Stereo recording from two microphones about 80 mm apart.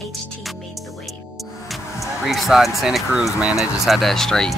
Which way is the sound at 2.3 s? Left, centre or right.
Centre.